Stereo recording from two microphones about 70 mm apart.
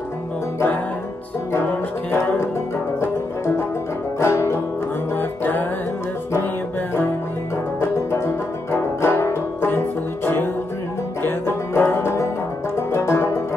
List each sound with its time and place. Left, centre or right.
2.1 s music: left
5.1 s music: left
8.7 s music: left
12.7 s banjo: left